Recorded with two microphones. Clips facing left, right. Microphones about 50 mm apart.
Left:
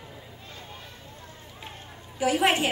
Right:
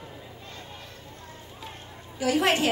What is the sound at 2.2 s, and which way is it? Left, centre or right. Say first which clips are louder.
Speech: even; centre.